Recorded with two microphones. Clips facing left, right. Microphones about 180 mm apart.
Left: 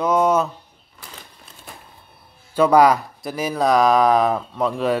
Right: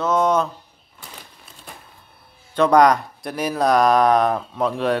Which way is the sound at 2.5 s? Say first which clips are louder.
Even; 5° left (ahead or behind).